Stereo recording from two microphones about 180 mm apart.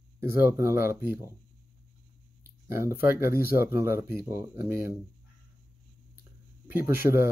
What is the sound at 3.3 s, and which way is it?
Speech, 55° left (ahead or behind).